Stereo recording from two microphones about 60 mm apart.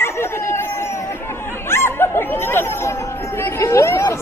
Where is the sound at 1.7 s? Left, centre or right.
Left.